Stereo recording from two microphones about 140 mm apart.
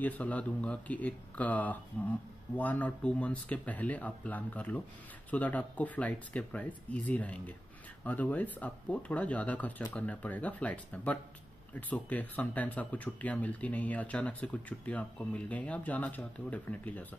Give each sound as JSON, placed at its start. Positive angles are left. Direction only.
{"t": 0.0, "sound": "speech", "side_deg": 10}